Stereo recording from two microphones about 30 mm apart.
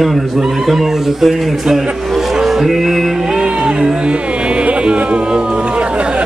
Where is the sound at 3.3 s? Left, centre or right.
Right.